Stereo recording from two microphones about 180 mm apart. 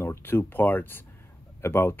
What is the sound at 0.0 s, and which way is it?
Speech, 10° left (ahead or behind).